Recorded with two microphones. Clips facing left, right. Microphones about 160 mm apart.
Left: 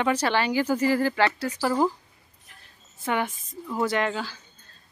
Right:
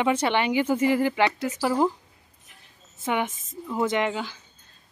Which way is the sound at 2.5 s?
20° right (ahead or behind).